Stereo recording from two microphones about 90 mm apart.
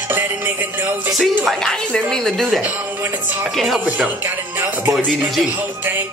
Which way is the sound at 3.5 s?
Centre (ahead or behind).